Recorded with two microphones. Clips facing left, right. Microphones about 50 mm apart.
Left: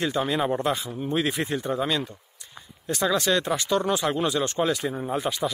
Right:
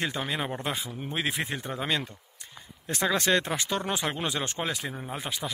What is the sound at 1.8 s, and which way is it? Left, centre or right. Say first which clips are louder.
Speech: left 4 dB; right.